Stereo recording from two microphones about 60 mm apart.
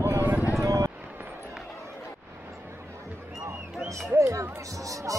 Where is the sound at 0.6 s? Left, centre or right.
Right.